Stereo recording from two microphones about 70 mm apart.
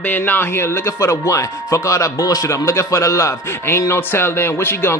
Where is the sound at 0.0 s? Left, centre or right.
Left.